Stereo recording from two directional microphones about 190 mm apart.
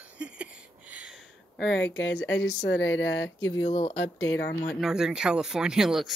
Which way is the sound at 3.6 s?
30° left (ahead or behind).